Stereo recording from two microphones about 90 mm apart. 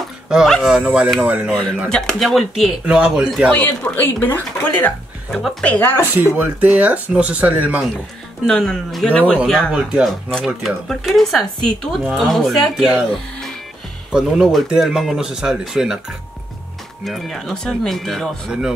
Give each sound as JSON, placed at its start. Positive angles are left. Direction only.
{"t": 0.5, "sound": "speech", "side_deg": 5}
{"t": 1.2, "sound": "speech", "side_deg": -20}
{"t": 1.5, "sound": "speech", "side_deg": 5}
{"t": 2.8, "sound": "speech", "side_deg": -10}
{"t": 3.5, "sound": "speech", "side_deg": 20}
{"t": 5.3, "sound": "speech", "side_deg": 0}
{"t": 5.6, "sound": "speech", "side_deg": 20}
{"t": 6.1, "sound": "speech", "side_deg": -20}
{"t": 8.5, "sound": "a man's voice", "side_deg": 5}
{"t": 9.5, "sound": "speech", "side_deg": -5}
{"t": 14.1, "sound": "speech", "side_deg": -5}
{"t": 17.0, "sound": "speech", "side_deg": 0}